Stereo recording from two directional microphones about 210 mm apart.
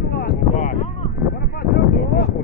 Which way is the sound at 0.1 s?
45° left (ahead or behind).